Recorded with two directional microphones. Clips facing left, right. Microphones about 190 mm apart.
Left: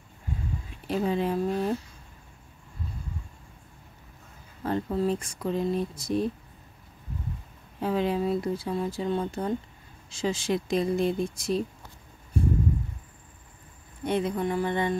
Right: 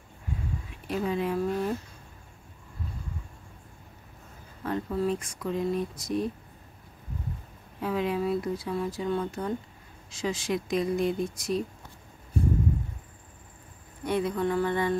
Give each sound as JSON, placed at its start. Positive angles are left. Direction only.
{"t": 0.8, "sound": "speech", "side_deg": 30}
{"t": 4.6, "sound": "speech", "side_deg": 30}
{"t": 7.8, "sound": "speech", "side_deg": 30}
{"t": 14.0, "sound": "speech", "side_deg": 25}